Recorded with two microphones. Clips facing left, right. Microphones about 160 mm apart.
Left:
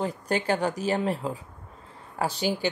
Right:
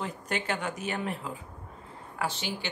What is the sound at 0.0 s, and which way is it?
A woman's voice, 35° left (ahead or behind).